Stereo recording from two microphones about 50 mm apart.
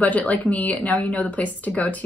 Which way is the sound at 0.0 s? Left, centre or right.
Left.